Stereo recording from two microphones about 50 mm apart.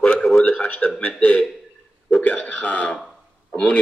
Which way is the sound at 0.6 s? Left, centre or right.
Left.